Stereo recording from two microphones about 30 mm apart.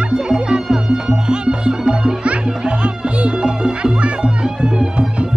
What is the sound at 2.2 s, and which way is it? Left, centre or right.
Music, right.